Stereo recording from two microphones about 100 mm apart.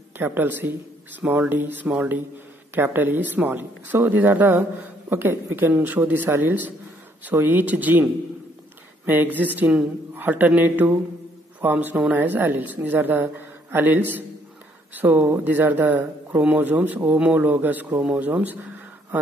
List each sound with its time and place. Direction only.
0.2 s speech: 20° right (ahead or behind)